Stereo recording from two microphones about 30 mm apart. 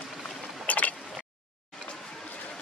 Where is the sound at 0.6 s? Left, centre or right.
Left.